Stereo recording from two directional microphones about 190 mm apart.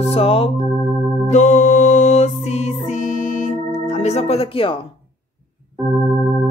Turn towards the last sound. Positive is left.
turn(degrees=30)  # may be behind; listen again after turning